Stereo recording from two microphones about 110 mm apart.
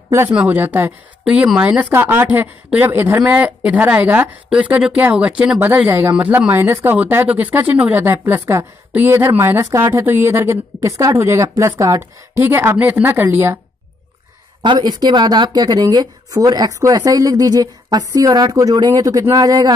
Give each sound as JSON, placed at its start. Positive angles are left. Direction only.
{"t": 0.5, "sound": "a woman's voice", "side_deg": -15}
{"t": 1.2, "sound": "a woman's voice", "side_deg": -5}
{"t": 5.9, "sound": "speech", "side_deg": -20}
{"t": 14.6, "sound": "speech", "side_deg": -45}